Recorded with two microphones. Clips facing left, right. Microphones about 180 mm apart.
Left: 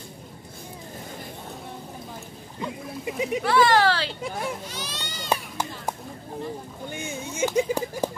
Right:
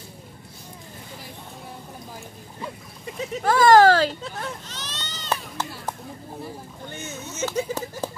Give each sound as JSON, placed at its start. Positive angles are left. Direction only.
{"t": 3.1, "sound": "speech", "side_deg": 15}
{"t": 3.4, "sound": "speech", "side_deg": -45}
{"t": 4.2, "sound": "a sound", "side_deg": 10}
{"t": 6.9, "sound": "speech", "side_deg": 10}